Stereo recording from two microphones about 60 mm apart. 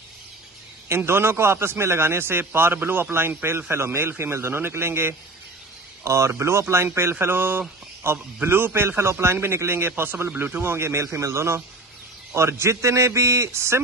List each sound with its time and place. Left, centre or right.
0.8 s a man's voice: right
6.0 s speech: right
7.0 s a man's voice: right